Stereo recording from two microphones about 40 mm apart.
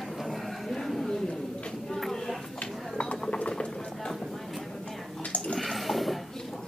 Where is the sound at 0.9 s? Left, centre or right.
Centre.